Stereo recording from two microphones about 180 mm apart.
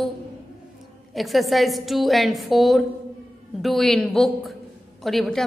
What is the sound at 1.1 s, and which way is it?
A woman's voice, centre (ahead or behind).